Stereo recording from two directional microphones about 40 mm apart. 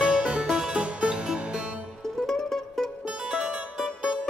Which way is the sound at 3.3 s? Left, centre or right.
Right.